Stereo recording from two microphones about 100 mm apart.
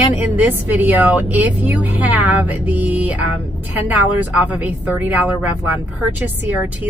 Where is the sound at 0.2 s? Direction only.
15° right (ahead or behind).